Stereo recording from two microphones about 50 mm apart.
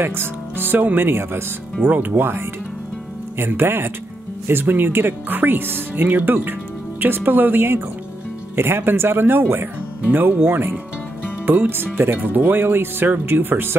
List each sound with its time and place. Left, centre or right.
0.0 s speech: right
1.9 s speech: right
10.3 s speech: right